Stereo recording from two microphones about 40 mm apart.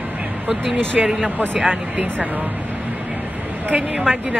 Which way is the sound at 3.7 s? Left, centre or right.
Right.